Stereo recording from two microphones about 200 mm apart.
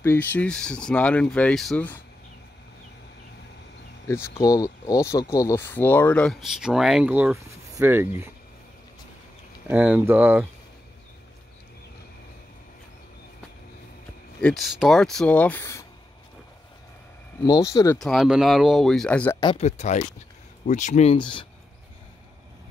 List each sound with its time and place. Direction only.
0.0 s speech: 10° left (ahead or behind)
4.4 s speech: 15° left (ahead or behind); by 8.3 s 10° right (ahead or behind)
9.7 s speech: 5° right (ahead or behind)
14.4 s speech: centre (ahead or behind)
17.4 s speech: 15° left (ahead or behind)
17.9 s speech: centre (ahead or behind)
19.4 s speech: 30° left (ahead or behind)